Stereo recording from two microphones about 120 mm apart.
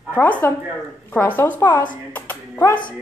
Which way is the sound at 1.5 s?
25° left (ahead or behind).